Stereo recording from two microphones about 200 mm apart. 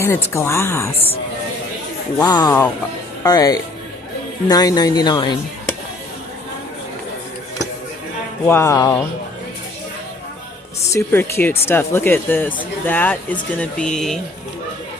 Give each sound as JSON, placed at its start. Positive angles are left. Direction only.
{"t": 0.0, "sound": "speech", "side_deg": 15}
{"t": 2.1, "sound": "speech", "side_deg": 20}
{"t": 8.5, "sound": "speech", "side_deg": 15}
{"t": 10.9, "sound": "speech", "side_deg": 10}